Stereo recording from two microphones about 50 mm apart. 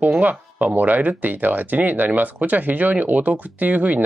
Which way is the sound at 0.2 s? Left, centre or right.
Right.